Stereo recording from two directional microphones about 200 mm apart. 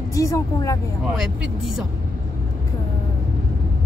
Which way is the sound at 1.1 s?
Centre (ahead or behind).